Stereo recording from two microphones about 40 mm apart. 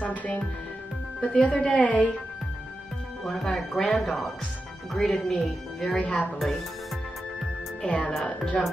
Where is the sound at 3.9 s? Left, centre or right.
Centre.